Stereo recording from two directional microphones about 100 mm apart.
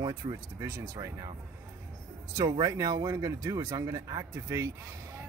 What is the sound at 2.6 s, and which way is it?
Speech, 35° right (ahead or behind).